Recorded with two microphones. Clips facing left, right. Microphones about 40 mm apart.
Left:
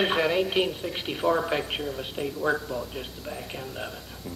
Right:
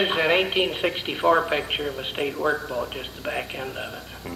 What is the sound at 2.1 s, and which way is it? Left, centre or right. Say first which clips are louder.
Speech: right 3 dB; right.